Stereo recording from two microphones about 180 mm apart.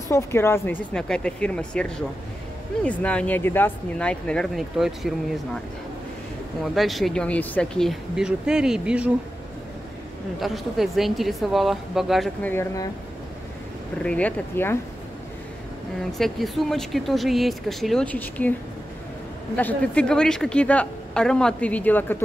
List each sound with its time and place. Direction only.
0.1 s speech: 15° left (ahead or behind); by 5.1 s centre (ahead or behind)
6.6 s speech: centre (ahead or behind)
10.4 s speech: centre (ahead or behind)
12.4 s speech: 15° left (ahead or behind)
14.0 s speech: 10° left (ahead or behind)
16.1 s speech: centre (ahead or behind)
19.5 s speech: 5° left (ahead or behind)